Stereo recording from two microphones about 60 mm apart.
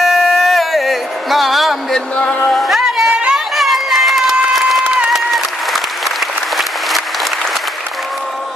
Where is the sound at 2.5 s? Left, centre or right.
Centre.